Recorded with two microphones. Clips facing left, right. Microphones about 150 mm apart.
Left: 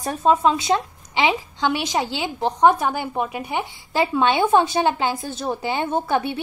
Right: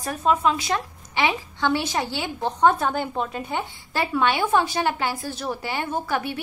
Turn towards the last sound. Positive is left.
turn(degrees=25)  # may be behind; listen again after turning